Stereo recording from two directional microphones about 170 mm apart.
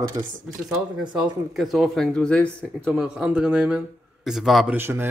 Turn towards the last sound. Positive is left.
turn(degrees=-15)  # may be behind; listen again after turning